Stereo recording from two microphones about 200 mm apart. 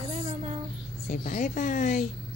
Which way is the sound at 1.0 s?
40° left (ahead or behind).